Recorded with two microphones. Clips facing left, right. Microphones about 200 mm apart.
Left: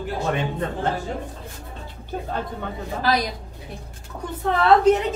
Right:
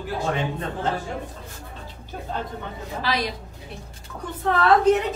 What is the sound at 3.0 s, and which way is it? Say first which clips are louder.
Speech: left 3 dB; 45° left (ahead or behind).